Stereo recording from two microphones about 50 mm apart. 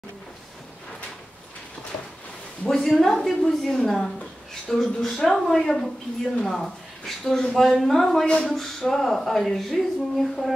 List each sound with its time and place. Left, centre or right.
2.7 s speech: centre
8.3 s speech: centre
8.5 s speech: centre